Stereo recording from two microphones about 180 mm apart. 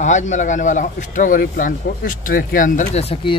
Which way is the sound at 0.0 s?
40° left (ahead or behind).